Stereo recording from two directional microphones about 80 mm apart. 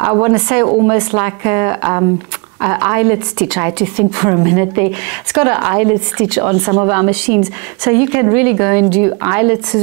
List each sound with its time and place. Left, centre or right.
0.0 s a woman's voice: right